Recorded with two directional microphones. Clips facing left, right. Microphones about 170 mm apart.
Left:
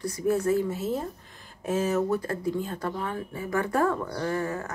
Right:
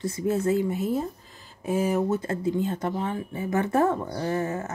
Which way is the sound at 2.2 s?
25° right (ahead or behind).